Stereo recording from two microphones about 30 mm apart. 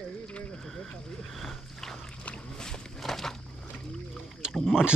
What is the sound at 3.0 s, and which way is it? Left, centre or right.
Walk, centre.